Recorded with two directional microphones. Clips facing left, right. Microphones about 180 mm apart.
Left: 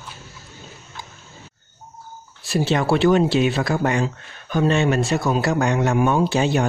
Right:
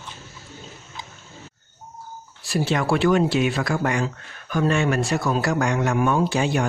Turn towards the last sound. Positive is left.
turn(degrees=25)  # may be behind; listen again after turning